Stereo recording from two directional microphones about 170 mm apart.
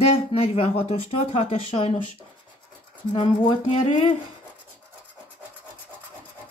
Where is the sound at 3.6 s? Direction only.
45° left (ahead or behind).